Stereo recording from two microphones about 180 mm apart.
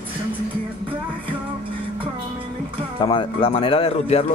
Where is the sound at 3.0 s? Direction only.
25° left (ahead or behind).